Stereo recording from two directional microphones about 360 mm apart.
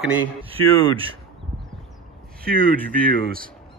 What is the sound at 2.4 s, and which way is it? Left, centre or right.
Speech, right.